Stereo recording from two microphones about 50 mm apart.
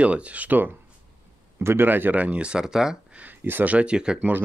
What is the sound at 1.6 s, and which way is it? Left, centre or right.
Speech, right.